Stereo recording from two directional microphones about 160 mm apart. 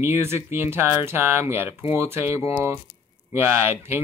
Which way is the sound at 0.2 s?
15° right (ahead or behind).